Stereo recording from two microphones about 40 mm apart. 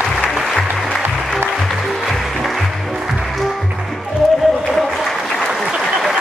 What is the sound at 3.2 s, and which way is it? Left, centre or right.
Music, centre.